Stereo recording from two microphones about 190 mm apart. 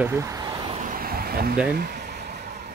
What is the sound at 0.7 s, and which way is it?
Vehicle, 45° right (ahead or behind).